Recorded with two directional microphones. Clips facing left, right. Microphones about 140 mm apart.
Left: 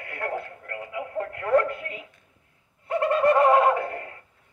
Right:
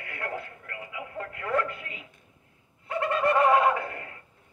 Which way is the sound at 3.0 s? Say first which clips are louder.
Left 4 dB; 50° left (ahead or behind).